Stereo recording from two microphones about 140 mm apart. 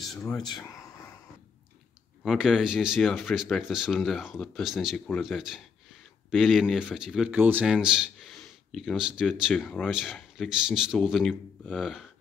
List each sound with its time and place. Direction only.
0.0 s a sound: centre (ahead or behind)
0.5 s speech: 30° left (ahead or behind)
2.2 s speech: 5° right (ahead or behind)